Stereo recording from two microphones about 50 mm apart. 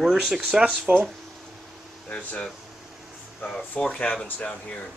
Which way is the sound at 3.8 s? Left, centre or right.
Left.